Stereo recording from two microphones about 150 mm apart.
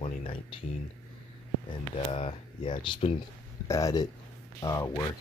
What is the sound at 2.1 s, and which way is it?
Speech, 35° left (ahead or behind).